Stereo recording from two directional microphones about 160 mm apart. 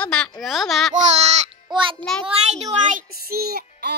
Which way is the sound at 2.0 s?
5° left (ahead or behind).